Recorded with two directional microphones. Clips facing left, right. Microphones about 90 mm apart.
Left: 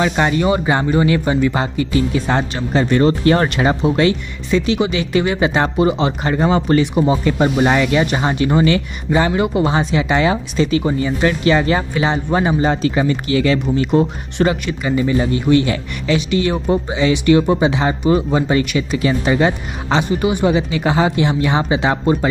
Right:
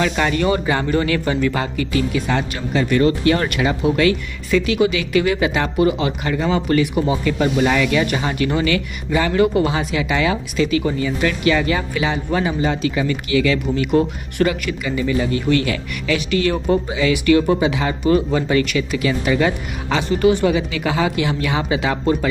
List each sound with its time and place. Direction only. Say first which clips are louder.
0.0 s speech: left 2 dB; 25° left (ahead or behind)
20.5 s speech: left 3 dB; 30° left (ahead or behind)